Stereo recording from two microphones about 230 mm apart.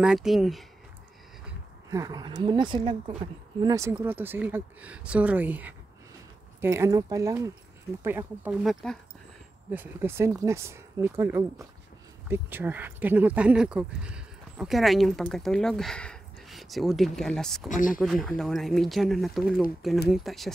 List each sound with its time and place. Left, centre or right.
0.0 s speech: centre
1.9 s speech: centre
17.6 s speech: left
17.9 s speech: centre